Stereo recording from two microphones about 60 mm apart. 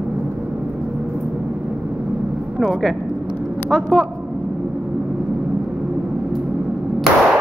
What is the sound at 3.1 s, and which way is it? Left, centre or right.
Vehicle, centre.